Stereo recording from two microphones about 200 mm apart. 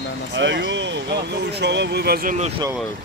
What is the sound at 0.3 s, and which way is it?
Speech, 60° right (ahead or behind).